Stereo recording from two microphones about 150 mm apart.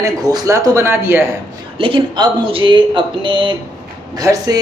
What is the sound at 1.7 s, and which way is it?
A woman's voice, 35° right (ahead or behind).